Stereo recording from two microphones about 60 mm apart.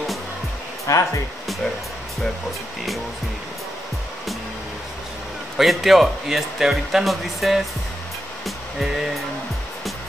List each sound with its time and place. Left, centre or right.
0.9 s speech: left
5.6 s speech: centre
8.5 s music: centre